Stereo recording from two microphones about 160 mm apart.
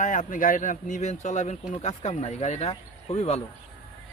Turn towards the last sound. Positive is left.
turn(degrees=40)  # may be behind; listen again after turning